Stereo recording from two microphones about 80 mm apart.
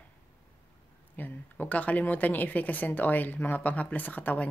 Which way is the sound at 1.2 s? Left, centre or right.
Left.